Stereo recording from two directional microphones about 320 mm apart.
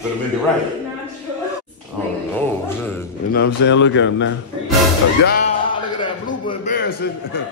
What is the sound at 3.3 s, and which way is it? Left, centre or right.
Speech, left.